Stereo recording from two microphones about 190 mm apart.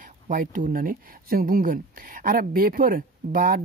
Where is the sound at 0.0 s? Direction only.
45° right (ahead or behind).